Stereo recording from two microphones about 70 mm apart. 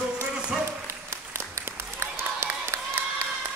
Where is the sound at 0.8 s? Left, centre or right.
Right.